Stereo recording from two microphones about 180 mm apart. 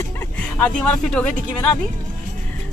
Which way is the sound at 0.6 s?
5° left (ahead or behind).